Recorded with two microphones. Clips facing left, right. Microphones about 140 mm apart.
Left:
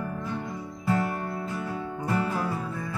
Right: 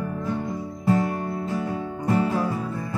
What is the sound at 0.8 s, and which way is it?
Music, 25° right (ahead or behind).